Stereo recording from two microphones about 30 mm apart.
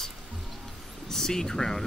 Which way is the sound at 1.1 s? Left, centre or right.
Centre.